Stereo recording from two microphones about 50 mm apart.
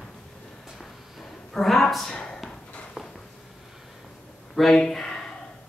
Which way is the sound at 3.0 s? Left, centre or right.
Centre.